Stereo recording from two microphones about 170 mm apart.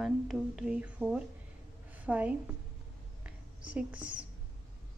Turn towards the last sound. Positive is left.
turn(degrees=-10)  # may be behind; listen again after turning